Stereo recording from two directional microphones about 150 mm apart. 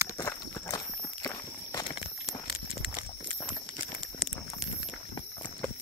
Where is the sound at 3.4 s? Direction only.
10° left (ahead or behind).